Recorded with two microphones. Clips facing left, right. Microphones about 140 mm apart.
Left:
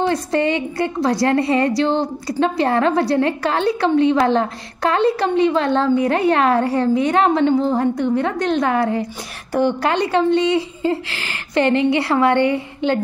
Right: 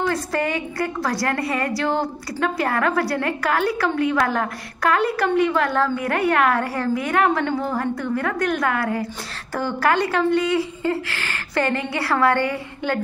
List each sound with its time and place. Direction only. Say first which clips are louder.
0.0 s a woman's voice: left 5 dB; 25° left (ahead or behind)